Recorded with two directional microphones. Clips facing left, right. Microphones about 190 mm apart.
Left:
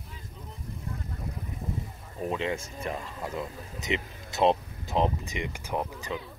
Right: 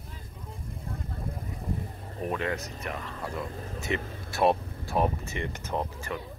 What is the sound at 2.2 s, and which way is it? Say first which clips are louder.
Speech: even; 20° left (ahead or behind).